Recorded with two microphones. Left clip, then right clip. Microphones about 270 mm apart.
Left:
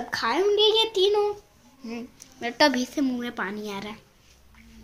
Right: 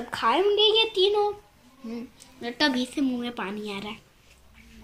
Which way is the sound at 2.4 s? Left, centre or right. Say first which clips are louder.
Left 4 dB; centre.